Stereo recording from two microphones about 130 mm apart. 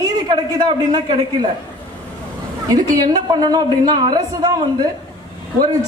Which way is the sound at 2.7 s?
30° right (ahead or behind).